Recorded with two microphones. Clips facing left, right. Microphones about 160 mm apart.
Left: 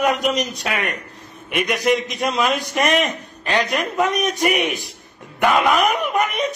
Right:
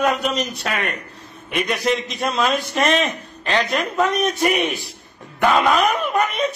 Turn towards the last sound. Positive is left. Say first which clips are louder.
# even
turn(degrees=15)  # may be behind; listen again after turning